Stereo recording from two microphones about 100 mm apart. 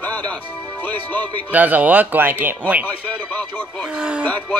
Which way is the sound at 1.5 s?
15° right (ahead or behind).